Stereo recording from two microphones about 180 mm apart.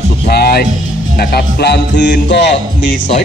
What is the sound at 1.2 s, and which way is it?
Speech, 60° left (ahead or behind).